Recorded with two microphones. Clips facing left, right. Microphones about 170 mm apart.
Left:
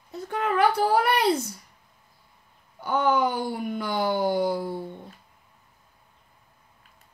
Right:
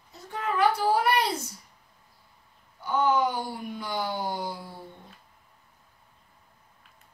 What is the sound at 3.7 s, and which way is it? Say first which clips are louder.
Speech: left 7 dB; 55° left (ahead or behind).